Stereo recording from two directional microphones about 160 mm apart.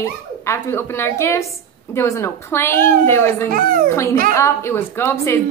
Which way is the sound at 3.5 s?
60° right (ahead or behind).